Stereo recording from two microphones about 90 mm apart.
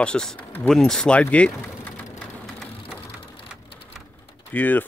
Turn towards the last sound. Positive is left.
turn(degrees=20)  # may be behind; listen again after turning